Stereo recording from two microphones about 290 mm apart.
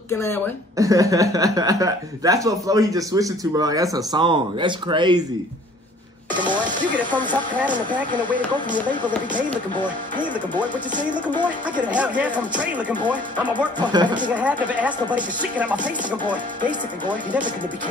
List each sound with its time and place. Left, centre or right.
0.7 s speech: centre
6.4 s speech: centre
9.8 s speech: centre
11.8 s music: centre
13.7 s speech: centre
14.7 s music: centre